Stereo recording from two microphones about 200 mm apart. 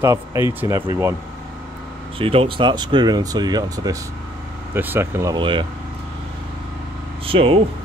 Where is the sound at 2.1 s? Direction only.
25° right (ahead or behind).